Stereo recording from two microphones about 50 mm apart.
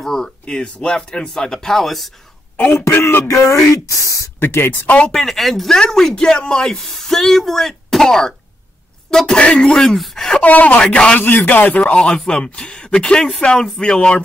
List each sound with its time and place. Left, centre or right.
0.0 s speech: centre
2.7 s speech: left
3.3 s speech: left
4.4 s speech: left
5.1 s speech: centre
6.8 s speech: centre
9.9 s speech: centre
10.4 s speech: left
11.8 s speech: centre